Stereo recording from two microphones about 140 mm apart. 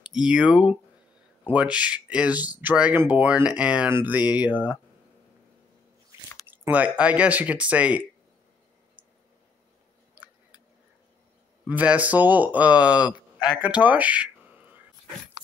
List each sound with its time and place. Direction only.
0.0 s speech: 5° right (ahead or behind)
6.5 s speech: 10° right (ahead or behind)
10.1 s a sound: 10° right (ahead or behind)
11.6 s speech: 10° right (ahead or behind)
13.1 s a sound: 30° left (ahead or behind)
13.6 s speech: 10° right (ahead or behind)